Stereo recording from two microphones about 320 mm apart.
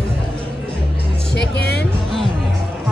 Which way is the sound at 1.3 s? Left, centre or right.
Left.